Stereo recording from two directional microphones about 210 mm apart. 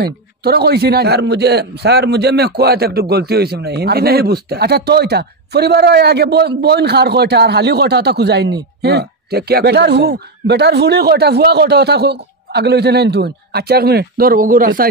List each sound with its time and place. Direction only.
0.0 s a man's voice: 50° right (ahead or behind)